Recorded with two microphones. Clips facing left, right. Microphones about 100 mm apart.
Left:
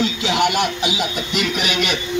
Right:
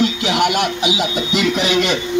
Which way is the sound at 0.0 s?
10° right (ahead or behind).